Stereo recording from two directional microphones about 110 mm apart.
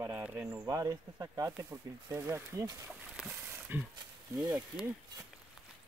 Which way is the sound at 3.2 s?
15° right (ahead or behind).